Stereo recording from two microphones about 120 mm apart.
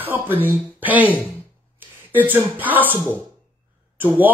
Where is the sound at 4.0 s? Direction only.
15° right (ahead or behind).